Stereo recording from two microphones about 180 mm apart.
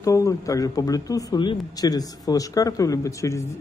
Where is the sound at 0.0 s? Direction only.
15° left (ahead or behind).